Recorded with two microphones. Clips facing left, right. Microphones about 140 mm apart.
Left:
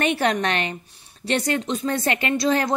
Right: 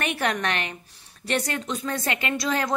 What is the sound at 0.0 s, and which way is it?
A woman's voice, 30° left (ahead or behind).